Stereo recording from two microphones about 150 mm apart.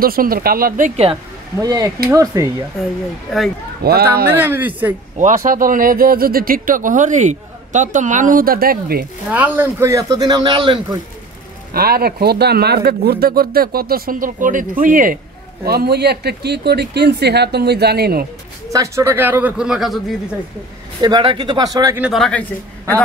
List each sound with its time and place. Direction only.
0.0 s speech: 75° right (ahead or behind)
1.6 s speech: 25° right (ahead or behind)
3.8 s speech: 90° right
4.3 s a man's voice: 15° right (ahead or behind)
5.1 s speech: 55° right (ahead or behind); by 9.0 s 85° right
9.3 s speech: 10° right (ahead or behind); by 11.0 s 30° right (ahead or behind)
11.7 s speech: 90° right; by 15.1 s 65° right (ahead or behind)
15.6 s speech: 90° right
18.7 s a man's voice: 20° right (ahead or behind); by 20.2 s centre (ahead or behind)
21.0 s speech: 30° right (ahead or behind)
22.1 s a man's voice: 5° left (ahead or behind)